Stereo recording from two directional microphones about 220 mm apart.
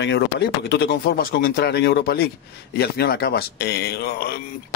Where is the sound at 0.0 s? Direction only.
50° left (ahead or behind).